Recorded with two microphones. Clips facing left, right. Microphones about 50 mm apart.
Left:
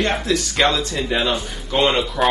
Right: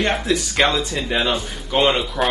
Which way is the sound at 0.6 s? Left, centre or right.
Centre.